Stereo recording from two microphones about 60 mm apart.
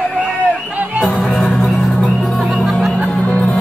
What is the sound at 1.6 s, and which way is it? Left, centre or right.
Music, centre.